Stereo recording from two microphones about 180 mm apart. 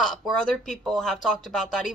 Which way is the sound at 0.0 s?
5° left (ahead or behind).